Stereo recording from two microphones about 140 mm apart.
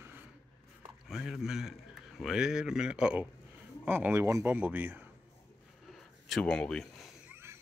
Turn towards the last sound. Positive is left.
turn(degrees=-15)  # may be behind; listen again after turning